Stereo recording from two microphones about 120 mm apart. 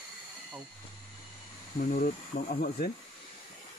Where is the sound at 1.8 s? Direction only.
90° left.